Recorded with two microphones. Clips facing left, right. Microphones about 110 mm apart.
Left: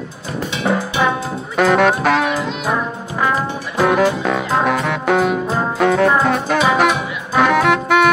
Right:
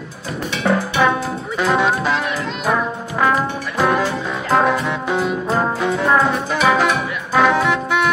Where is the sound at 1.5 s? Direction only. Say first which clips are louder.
Left 4 dB; 65° left (ahead or behind).